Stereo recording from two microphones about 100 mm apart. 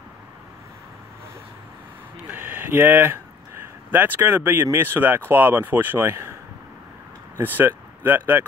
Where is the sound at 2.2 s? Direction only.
20° right (ahead or behind).